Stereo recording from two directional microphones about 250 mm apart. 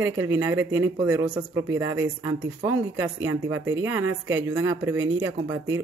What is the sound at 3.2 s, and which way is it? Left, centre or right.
Speech, right.